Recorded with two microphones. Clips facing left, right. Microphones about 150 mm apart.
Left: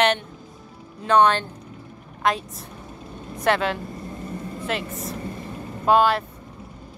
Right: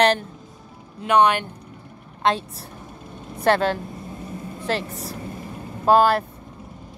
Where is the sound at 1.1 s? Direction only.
15° right (ahead or behind).